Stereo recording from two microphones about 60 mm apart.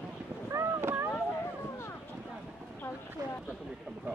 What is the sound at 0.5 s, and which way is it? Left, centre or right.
Boat, right.